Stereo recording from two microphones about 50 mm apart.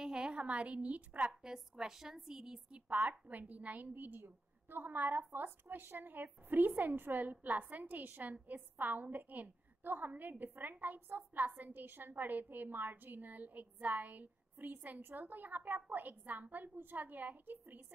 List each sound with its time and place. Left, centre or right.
0.0 s a woman's voice: centre
1.3 s a woman's voice: centre
2.7 s a woman's voice: right